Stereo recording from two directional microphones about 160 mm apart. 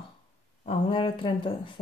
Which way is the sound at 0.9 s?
30° left (ahead or behind).